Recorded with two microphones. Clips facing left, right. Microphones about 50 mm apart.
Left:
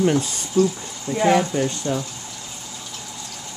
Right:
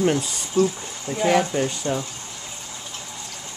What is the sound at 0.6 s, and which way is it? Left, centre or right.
Speech, right.